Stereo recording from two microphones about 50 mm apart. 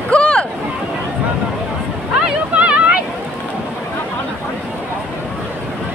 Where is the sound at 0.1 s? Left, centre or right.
Left.